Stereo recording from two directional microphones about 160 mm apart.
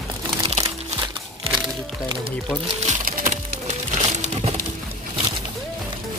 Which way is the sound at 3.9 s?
45° right (ahead or behind).